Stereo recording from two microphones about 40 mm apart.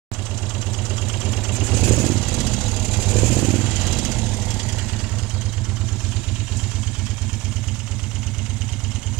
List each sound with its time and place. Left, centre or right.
1.2 s vehicle: right
1.6 s vehicle: centre
2.3 s vehicle: centre
2.8 s vehicle: centre